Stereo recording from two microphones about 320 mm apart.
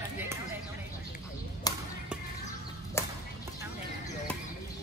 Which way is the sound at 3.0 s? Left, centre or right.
Centre.